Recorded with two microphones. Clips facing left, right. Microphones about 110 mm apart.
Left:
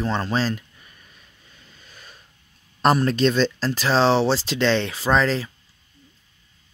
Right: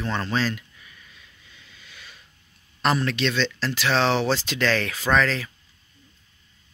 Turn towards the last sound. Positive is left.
turn(degrees=30)  # may be behind; listen again after turning